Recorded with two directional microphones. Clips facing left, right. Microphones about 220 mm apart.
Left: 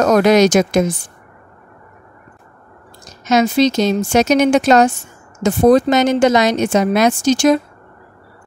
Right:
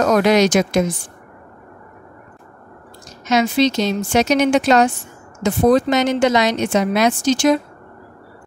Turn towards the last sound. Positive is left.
turn(degrees=45)  # may be behind; listen again after turning